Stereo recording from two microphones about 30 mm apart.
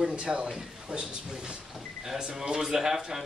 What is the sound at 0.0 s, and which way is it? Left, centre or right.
A man's voice, right.